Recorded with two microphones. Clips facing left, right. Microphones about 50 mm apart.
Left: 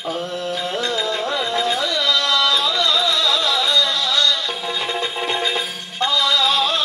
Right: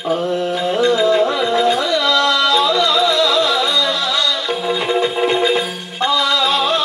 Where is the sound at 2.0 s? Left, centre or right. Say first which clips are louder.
Right 2 dB; centre.